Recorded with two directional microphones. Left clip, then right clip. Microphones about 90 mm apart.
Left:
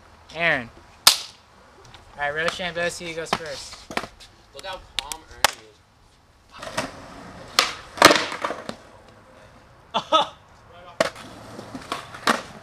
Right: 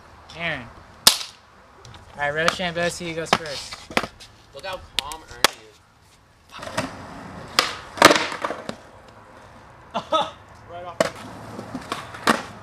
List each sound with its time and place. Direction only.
0.3 s speech: 35° left (ahead or behind)
1.9 s a sound: centre (ahead or behind)
2.5 s speech: 5° right (ahead or behind)
3.3 s chop: 10° right (ahead or behind)
5.0 s a sound: 10° right (ahead or behind)
5.4 s speech: 10° right (ahead or behind)
6.6 s vehicle: centre (ahead or behind)
7.3 s wood: centre (ahead or behind)
9.9 s a sound: 15° left (ahead or behind)
11.0 s skateboard: centre (ahead or behind)